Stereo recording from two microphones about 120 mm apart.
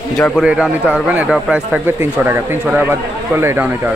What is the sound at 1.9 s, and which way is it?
Speech, 20° right (ahead or behind).